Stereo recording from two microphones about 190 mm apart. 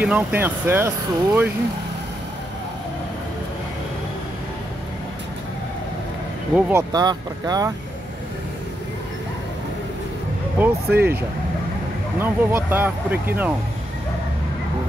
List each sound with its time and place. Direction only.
0.0 s speech: 10° right (ahead or behind)
6.7 s speech: 20° right (ahead or behind)
10.6 s speech: 10° right (ahead or behind)
12.2 s speech: 10° right (ahead or behind)